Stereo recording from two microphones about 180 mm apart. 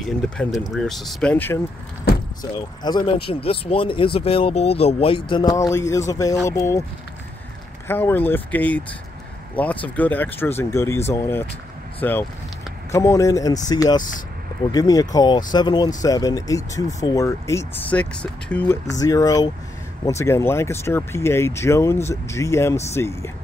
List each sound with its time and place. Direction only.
0.0 s speech: centre (ahead or behind)
2.1 s vehicle: 60° left (ahead or behind)
2.5 s speech: 25° left (ahead or behind)
7.9 s speech: 10° left (ahead or behind)